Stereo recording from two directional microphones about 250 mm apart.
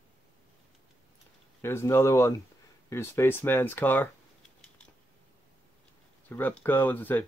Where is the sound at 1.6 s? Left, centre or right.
Centre.